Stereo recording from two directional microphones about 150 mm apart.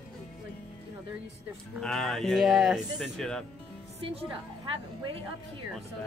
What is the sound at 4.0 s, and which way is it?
A woman's voice, 40° right (ahead or behind).